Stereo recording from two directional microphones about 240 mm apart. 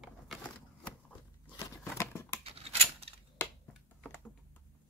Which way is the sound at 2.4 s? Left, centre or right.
Right.